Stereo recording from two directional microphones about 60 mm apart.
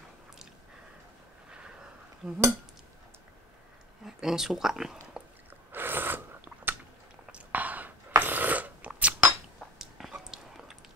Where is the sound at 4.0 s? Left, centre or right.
Centre.